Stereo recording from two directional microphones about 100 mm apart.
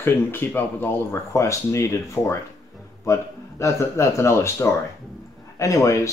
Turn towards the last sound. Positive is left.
turn(degrees=30)  # may be behind; listen again after turning